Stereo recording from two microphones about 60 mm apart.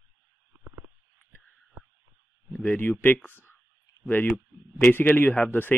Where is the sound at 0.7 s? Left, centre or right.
Right.